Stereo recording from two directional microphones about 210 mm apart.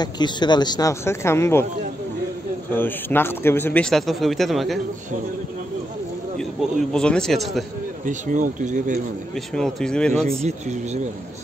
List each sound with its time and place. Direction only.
0.0 s speech: 20° left (ahead or behind)
2.7 s speech: 10° left (ahead or behind)
6.3 s speech: 5° left (ahead or behind)
8.0 s speech: 35° right (ahead or behind)
9.3 s speech: centre (ahead or behind)
10.4 s speech: 30° right (ahead or behind)